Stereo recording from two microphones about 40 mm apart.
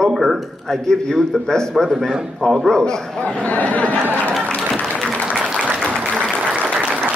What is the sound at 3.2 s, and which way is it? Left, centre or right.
Speech, left.